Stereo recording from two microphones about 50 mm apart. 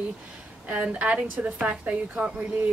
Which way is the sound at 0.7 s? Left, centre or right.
Right.